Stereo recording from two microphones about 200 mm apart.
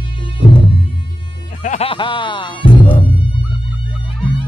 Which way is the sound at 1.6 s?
35° left (ahead or behind).